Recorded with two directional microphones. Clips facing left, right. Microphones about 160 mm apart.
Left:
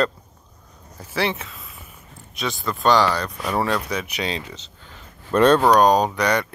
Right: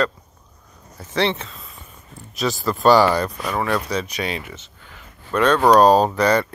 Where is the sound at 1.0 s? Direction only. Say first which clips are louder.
Right 3 dB; 10° left (ahead or behind); by 3.3 s 10° right (ahead or behind).